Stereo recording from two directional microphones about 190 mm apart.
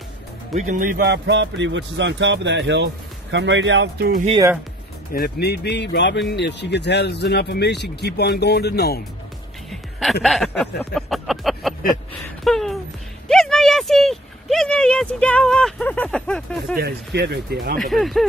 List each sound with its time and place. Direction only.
0.6 s speech: 40° right (ahead or behind); by 4.2 s 65° right (ahead or behind)
5.1 s speech: 55° left (ahead or behind)
9.7 s music: centre (ahead or behind)
10.2 s speech: centre (ahead or behind)
10.8 s a sound: centre (ahead or behind)
12.4 s speech: centre (ahead or behind)
13.3 s a sound: centre (ahead or behind)
16.7 s speech: 55° right (ahead or behind)
17.7 s speech: centre (ahead or behind)